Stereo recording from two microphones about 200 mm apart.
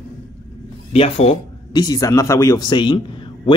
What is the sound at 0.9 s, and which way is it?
Speech, 30° left (ahead or behind).